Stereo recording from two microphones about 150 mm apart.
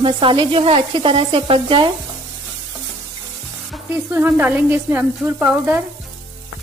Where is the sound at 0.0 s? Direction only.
35° right (ahead or behind).